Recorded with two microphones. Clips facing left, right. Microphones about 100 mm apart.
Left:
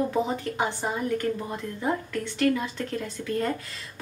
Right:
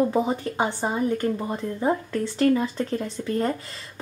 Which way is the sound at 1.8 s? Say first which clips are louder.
Right 4 dB; 35° right (ahead or behind).